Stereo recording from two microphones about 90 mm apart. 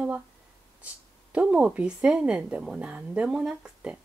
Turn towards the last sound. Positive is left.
turn(degrees=-10)  # may be behind; listen again after turning